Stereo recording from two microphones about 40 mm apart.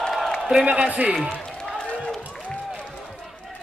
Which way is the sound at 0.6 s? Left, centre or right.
Right.